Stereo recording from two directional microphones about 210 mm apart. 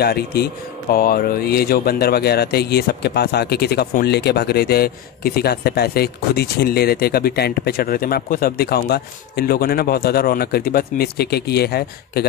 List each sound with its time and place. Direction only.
0.0 s speech: 50° left (ahead or behind)